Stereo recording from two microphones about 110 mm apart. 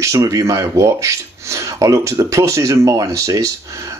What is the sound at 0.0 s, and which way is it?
Speech, 30° right (ahead or behind).